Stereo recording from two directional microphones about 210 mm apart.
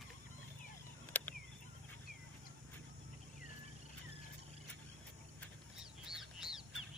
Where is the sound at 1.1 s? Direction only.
10° left (ahead or behind).